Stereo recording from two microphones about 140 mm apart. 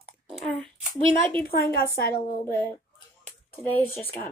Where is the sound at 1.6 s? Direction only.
90° left.